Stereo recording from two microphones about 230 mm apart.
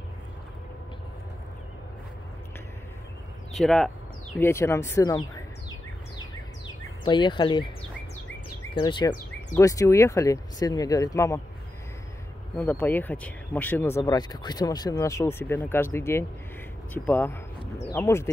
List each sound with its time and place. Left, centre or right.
3.5 s speech: centre
7.1 s speech: centre
8.7 s speech: centre
12.5 s speech: centre
17.6 s bird: left
17.9 s speech: centre